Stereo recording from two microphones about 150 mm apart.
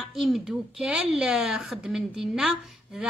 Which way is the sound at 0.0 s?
Centre (ahead or behind).